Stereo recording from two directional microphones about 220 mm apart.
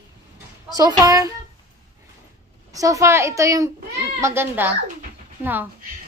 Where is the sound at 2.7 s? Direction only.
15° right (ahead or behind).